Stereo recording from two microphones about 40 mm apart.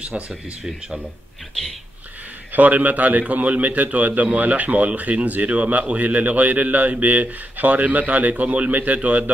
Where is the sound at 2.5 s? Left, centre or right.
Right.